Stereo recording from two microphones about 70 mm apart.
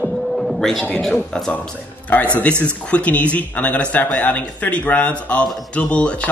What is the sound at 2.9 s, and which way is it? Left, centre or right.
Speech, centre.